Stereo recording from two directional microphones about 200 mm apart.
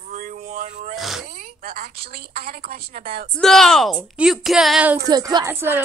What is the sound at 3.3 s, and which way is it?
A woman's voice, centre (ahead or behind).